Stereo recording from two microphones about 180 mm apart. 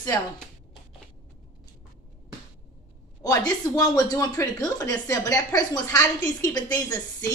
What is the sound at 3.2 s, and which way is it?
A woman's voice, 20° left (ahead or behind).